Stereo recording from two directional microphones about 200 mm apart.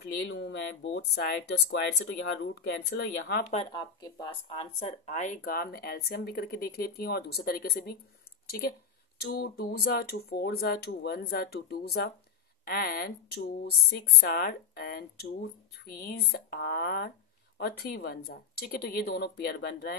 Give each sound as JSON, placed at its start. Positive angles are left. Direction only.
{"t": 0.3, "sound": "speech", "side_deg": 60}
{"t": 3.4, "sound": "speech", "side_deg": 30}
{"t": 9.2, "sound": "speech", "side_deg": 50}